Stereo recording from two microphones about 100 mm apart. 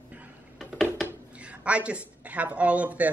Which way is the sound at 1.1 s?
15° right (ahead or behind).